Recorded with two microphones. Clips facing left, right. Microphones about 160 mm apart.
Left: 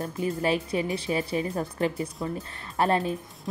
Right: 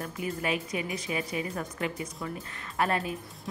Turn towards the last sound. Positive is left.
turn(degrees=30)  # may be behind; listen again after turning